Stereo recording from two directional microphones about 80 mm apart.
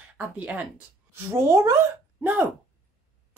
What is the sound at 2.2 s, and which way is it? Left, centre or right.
Speech, right.